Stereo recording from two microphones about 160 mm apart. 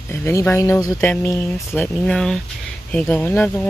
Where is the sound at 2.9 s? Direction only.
10° left (ahead or behind).